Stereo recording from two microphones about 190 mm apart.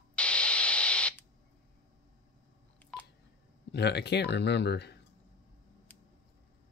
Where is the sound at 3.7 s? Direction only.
60° left (ahead or behind).